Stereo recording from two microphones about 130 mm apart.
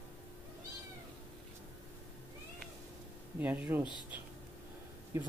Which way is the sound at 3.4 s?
15° right (ahead or behind).